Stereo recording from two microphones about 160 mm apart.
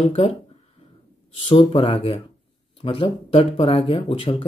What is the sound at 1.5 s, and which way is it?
Speech, 35° left (ahead or behind).